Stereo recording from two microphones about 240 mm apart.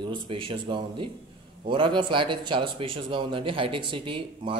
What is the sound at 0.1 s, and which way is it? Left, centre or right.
A man's voice, right.